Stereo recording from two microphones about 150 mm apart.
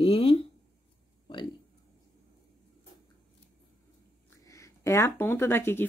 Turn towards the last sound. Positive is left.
turn(degrees=15)  # may be behind; listen again after turning